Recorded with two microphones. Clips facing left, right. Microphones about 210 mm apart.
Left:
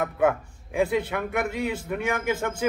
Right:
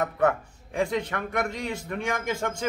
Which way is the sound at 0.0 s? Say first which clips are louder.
Left 1 dB; 5° left (ahead or behind).